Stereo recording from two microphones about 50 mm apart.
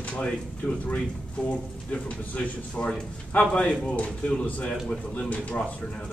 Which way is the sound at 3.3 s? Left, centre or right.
Left.